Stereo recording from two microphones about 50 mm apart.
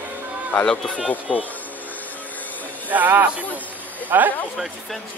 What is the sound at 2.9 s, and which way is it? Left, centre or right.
Speech, right.